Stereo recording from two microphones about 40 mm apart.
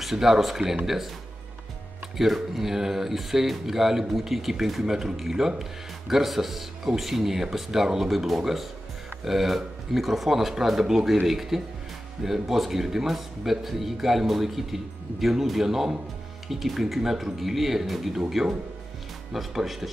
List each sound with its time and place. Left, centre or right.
0.0 s speech: centre
2.1 s speech: centre
19.3 s speech: centre